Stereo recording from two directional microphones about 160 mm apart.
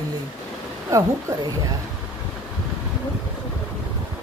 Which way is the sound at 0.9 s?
20° right (ahead or behind).